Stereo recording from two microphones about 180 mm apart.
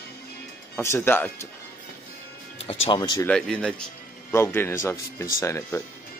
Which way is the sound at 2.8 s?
25° left (ahead or behind).